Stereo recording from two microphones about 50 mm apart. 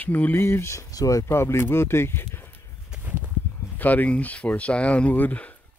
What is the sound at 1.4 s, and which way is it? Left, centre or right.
Speech, left.